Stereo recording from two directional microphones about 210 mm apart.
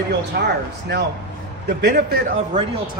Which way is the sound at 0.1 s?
55° right (ahead or behind).